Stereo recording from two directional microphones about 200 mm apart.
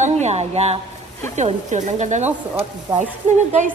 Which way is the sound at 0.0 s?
35° right (ahead or behind).